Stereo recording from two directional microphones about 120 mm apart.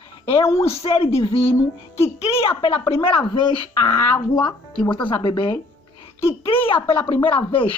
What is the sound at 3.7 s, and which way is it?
Speech, 30° left (ahead or behind).